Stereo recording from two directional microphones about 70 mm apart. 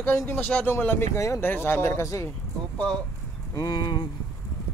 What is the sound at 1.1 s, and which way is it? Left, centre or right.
Speech, left.